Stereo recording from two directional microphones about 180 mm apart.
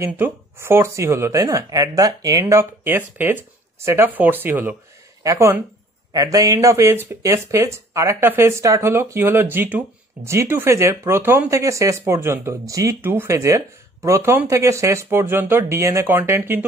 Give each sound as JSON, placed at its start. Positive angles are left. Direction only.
{"t": 0.0, "sound": "speech", "side_deg": -15}